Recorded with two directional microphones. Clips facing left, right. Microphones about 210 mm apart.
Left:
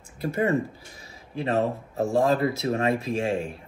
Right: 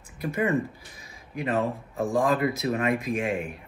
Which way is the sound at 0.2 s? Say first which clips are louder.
Left 1 dB; 30° left (ahead or behind).